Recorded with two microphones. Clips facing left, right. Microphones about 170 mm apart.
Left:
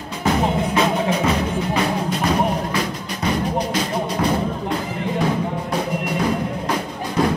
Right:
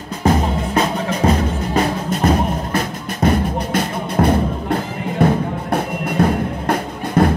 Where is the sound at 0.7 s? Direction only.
45° right (ahead or behind).